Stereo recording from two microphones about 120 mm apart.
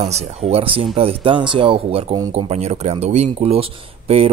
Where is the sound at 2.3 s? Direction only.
60° right (ahead or behind).